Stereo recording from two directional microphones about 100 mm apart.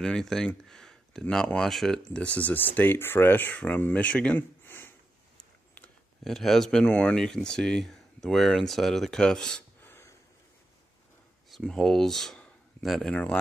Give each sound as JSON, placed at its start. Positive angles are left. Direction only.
{"t": 0.0, "sound": "speech", "side_deg": 5}
{"t": 6.2, "sound": "speech", "side_deg": 5}
{"t": 9.8, "sound": "a sound", "side_deg": 25}
{"t": 11.5, "sound": "speech", "side_deg": 5}